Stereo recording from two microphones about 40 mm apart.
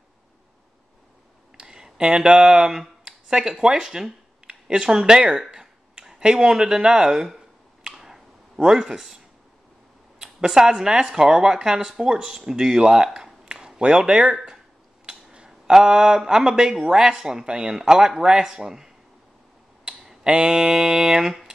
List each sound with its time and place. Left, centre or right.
1.6 s speech: centre
6.0 s speech: centre
7.2 s a sound: centre
8.5 s speech: centre
10.1 s speech: centre
20.2 s speech: right